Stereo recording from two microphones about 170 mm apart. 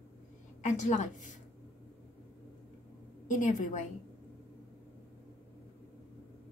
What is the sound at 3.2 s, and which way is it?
Speech, 45° left (ahead or behind).